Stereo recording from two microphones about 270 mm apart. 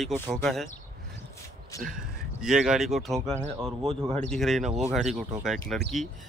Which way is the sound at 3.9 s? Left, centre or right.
Right.